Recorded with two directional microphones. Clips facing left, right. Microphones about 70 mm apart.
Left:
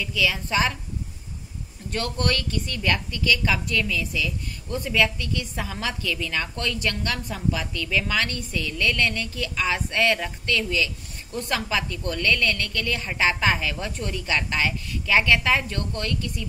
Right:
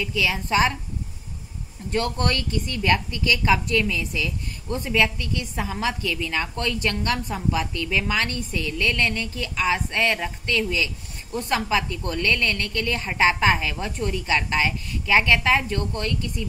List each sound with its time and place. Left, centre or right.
0.0 s a woman's voice: right
1.9 s a woman's voice: centre
4.1 s a woman's voice: right; by 16.4 s centre